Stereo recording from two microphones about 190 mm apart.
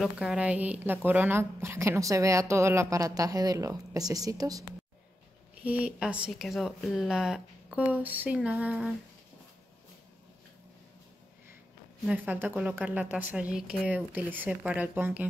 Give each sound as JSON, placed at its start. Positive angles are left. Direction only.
{"t": 0.0, "sound": "a woman's voice", "side_deg": -5}
{"t": 5.7, "sound": "speech", "side_deg": -5}
{"t": 12.1, "sound": "a woman's voice", "side_deg": -10}